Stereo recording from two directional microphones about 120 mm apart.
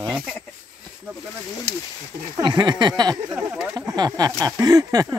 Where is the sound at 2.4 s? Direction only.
40° right (ahead or behind).